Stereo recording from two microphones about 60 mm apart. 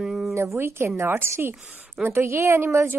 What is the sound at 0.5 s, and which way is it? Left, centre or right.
A woman's voice, right.